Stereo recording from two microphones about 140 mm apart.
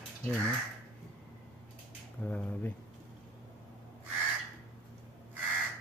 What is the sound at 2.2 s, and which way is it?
Speech, 10° left (ahead or behind).